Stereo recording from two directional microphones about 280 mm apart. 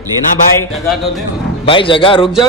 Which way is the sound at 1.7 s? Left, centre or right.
Centre.